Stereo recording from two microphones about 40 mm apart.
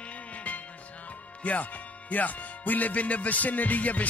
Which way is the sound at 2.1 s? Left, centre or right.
Left.